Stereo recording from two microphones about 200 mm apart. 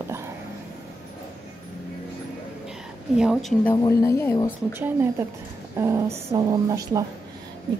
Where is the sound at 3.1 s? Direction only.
5° right (ahead or behind).